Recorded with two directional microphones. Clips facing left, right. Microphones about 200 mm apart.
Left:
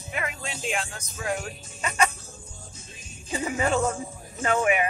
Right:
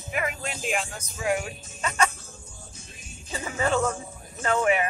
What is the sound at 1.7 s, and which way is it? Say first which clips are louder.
Music: even; 10° left (ahead or behind).